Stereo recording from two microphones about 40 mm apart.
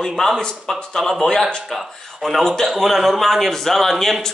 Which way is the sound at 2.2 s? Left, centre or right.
Centre.